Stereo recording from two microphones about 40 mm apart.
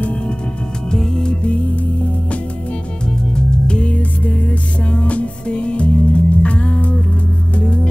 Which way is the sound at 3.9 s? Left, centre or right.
Left.